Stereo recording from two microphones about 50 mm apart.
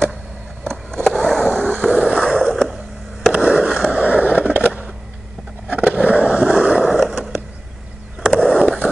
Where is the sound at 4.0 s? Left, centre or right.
Right.